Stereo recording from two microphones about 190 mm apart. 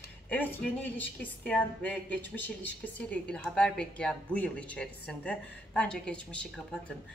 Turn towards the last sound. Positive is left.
turn(degrees=5)  # may be behind; listen again after turning